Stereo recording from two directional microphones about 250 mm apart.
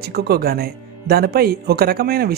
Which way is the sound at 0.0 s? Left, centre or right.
Right.